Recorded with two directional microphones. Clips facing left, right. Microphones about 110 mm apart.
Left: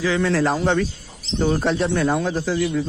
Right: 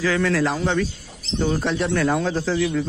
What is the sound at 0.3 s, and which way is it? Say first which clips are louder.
Speech: left 2 dB; 30° left (ahead or behind).